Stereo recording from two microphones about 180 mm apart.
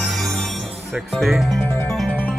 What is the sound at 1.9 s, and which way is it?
Music, centre (ahead or behind).